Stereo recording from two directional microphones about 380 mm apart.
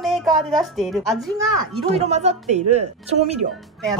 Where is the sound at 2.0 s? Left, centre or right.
Centre.